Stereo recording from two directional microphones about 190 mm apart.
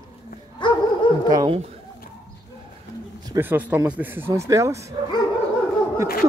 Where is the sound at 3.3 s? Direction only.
10° right (ahead or behind).